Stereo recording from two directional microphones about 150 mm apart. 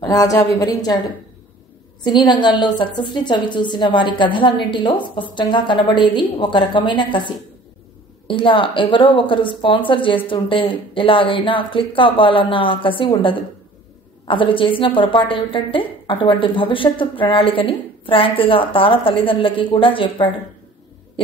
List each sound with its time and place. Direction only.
0.0 s a woman's voice: 25° left (ahead or behind)
2.0 s a woman's voice: 30° left (ahead or behind)